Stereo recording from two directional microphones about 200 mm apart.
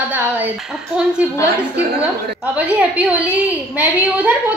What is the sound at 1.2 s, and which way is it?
Speech, 5° right (ahead or behind).